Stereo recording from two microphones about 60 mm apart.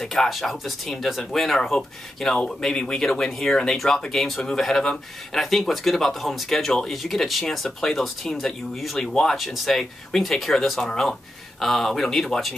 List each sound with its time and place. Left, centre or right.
0.0 s speech: centre